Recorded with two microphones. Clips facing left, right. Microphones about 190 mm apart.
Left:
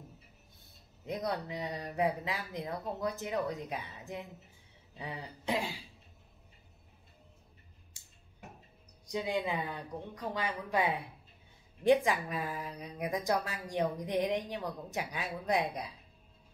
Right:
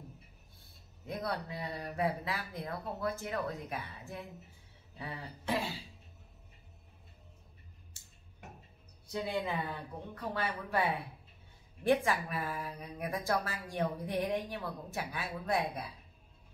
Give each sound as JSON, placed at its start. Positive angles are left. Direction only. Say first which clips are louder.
{"t": 1.0, "sound": "speech", "louder": "left 2 dB", "side_deg": 15}
{"t": 8.0, "sound": "a sound", "louder": "right 1 dB", "side_deg": 15}
{"t": 9.0, "sound": "speech", "louder": "left 2 dB", "side_deg": 15}